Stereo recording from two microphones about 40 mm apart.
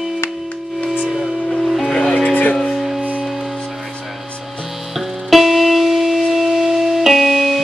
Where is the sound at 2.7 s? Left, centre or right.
Centre.